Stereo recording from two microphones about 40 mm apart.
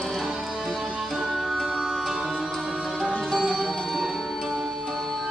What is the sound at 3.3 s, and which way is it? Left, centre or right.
Music, centre.